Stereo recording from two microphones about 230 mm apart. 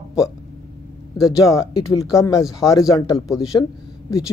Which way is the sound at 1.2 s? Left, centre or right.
Centre.